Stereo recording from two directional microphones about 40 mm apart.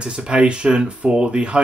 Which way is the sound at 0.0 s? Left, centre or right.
Right.